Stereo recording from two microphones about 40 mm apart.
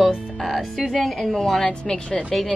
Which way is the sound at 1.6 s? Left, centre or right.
Left.